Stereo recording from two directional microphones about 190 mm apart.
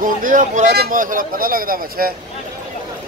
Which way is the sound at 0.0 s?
45° right (ahead or behind).